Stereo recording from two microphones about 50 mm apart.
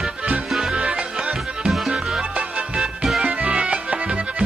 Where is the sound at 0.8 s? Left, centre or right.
Centre.